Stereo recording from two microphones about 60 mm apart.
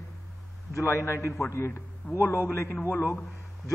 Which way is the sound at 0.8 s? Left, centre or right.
Left.